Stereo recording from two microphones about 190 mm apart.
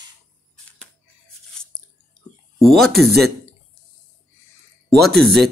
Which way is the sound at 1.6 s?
5° left (ahead or behind).